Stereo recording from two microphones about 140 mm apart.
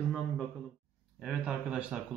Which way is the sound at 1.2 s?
5° right (ahead or behind).